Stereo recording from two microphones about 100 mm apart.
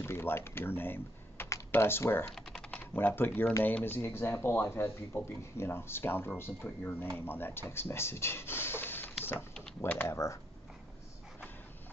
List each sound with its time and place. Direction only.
0.0 s speech: 25° left (ahead or behind)
2.3 s typing: 5° left (ahead or behind)
2.8 s speech: 20° left (ahead or behind)